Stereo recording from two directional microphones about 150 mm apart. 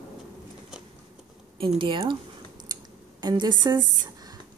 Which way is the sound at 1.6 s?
35° right (ahead or behind).